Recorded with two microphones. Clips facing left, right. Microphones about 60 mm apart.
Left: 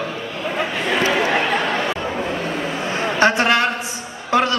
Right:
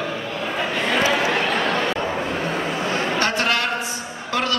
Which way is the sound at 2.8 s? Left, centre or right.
Left.